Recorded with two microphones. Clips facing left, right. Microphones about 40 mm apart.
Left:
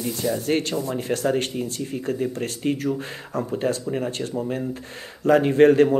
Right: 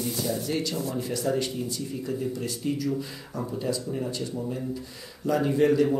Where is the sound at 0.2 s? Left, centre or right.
Left.